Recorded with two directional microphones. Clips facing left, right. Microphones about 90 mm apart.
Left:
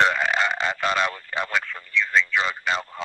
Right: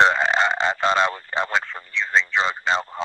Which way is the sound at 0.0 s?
30° right (ahead or behind).